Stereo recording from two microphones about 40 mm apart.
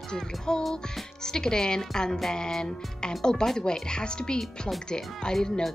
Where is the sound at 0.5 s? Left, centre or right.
Left.